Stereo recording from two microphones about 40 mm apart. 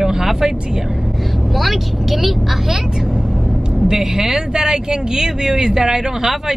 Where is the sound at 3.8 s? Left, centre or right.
Centre.